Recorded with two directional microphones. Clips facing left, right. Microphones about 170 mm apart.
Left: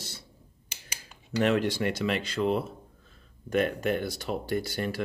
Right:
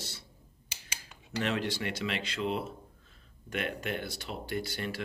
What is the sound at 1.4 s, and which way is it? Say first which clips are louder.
Speech: left 7 dB; 50° left (ahead or behind).